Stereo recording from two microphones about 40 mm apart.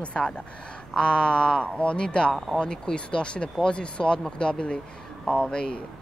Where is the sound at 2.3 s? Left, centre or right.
Centre.